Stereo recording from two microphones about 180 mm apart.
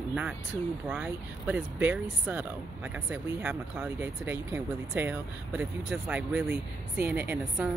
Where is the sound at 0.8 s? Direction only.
5° right (ahead or behind).